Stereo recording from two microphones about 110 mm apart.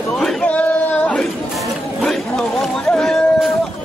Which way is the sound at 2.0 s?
5° left (ahead or behind).